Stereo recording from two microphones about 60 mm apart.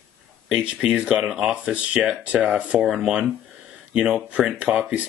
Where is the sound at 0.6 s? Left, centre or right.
Centre.